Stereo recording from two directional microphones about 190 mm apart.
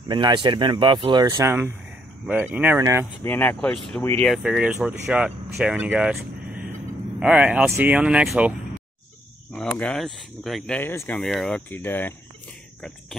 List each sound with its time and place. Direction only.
0.1 s speech: 25° right (ahead or behind)
3.3 s speech: 10° left (ahead or behind)
4.3 s speech: 5° right (ahead or behind)